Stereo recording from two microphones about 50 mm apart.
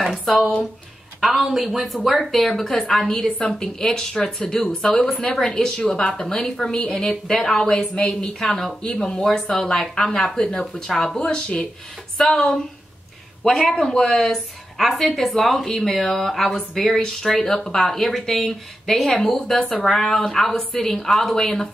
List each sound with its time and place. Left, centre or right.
0.0 s speech: centre
11.1 s speech: centre
13.4 s speech: centre